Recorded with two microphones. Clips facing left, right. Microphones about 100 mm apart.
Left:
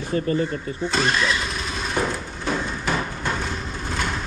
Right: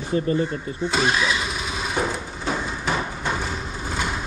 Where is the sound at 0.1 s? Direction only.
30° right (ahead or behind).